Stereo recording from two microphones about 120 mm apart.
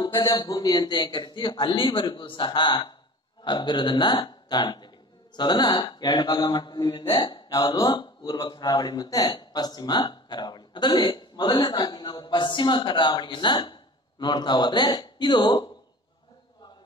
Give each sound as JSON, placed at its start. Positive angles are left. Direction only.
{"t": 0.3, "sound": "a man's voice", "side_deg": 35}